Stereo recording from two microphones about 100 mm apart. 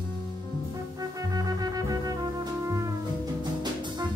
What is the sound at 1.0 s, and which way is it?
Music, 35° right (ahead or behind).